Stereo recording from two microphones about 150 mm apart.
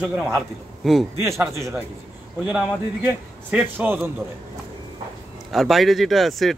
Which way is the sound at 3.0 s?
15° right (ahead or behind).